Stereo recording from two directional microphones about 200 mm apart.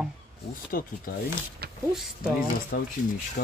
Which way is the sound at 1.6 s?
50° right (ahead or behind).